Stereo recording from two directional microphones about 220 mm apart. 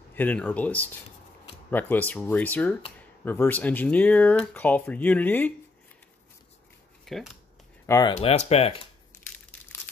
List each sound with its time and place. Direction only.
0.1 s speech: 10° left (ahead or behind)
7.1 s speech: centre (ahead or behind)
7.8 s speech: 15° left (ahead or behind)
8.2 s speech: 30° left (ahead or behind)